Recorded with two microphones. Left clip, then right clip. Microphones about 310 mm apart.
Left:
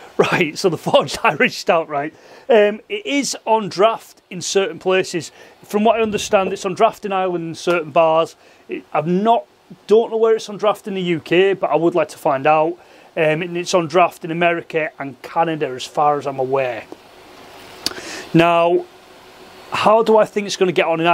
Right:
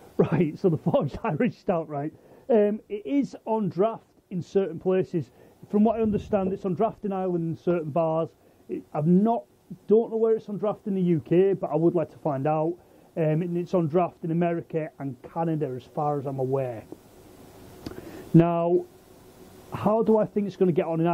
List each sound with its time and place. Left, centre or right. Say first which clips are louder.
0.2 s speech: left 8 dB; centre
9.9 s a man's voice: left 8 dB; left
10.2 s speech: left 9 dB; centre
17.8 s a sound: left 14 dB; centre
19.7 s speech: left 10 dB; centre